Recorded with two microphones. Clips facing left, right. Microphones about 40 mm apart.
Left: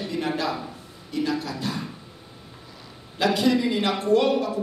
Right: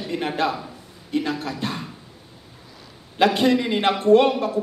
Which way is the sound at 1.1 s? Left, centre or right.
Right.